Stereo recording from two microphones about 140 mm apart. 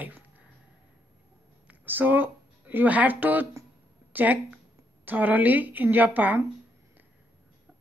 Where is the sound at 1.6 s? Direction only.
15° right (ahead or behind).